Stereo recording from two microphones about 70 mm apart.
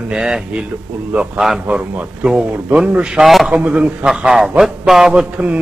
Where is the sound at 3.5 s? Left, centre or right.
Centre.